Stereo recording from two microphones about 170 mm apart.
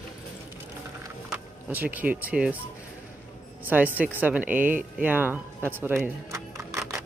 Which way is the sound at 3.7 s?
10° right (ahead or behind).